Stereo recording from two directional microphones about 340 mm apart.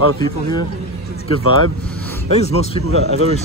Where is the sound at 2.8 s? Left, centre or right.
Right.